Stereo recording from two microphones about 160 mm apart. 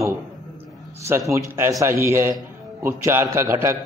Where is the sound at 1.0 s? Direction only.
15° right (ahead or behind).